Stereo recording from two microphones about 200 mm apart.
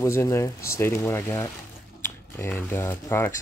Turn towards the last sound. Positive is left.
turn(degrees=10)  # may be behind; listen again after turning